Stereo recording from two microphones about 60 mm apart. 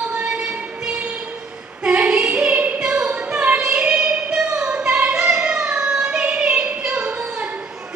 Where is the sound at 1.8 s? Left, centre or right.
Right.